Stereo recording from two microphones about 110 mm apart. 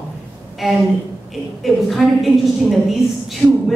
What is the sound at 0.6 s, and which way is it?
A woman's voice, centre (ahead or behind).